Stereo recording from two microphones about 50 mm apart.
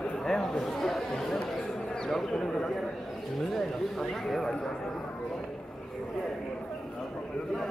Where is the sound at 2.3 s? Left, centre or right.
Centre.